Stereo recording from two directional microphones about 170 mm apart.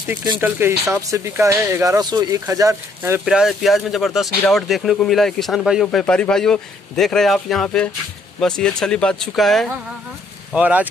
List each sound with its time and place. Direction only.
0.4 s speech: 15° right (ahead or behind)
3.3 s speech: centre (ahead or behind)